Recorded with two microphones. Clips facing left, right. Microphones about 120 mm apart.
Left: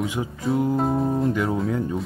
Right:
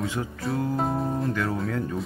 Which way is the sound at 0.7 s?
Centre (ahead or behind).